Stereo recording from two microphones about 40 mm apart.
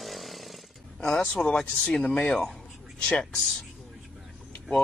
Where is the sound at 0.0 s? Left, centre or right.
Centre.